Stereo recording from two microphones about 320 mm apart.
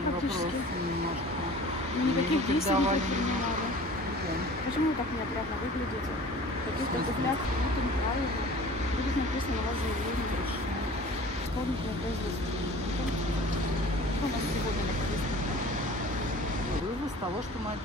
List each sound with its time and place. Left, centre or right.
2.7 s speech: right